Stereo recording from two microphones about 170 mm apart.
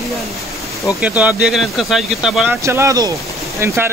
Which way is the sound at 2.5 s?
15° right (ahead or behind).